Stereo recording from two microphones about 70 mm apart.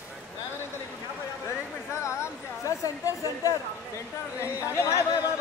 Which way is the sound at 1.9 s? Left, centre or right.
Left.